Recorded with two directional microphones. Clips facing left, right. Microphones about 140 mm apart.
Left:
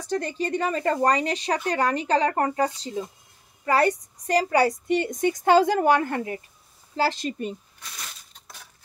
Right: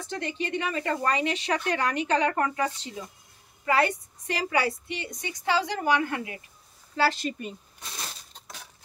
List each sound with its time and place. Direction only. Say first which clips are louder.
0.1 s a woman's voice: left 5 dB; 40° left (ahead or behind)
7.1 s speech: left 2 dB; 30° left (ahead or behind)
7.8 s a sound: right 2 dB; 30° right (ahead or behind)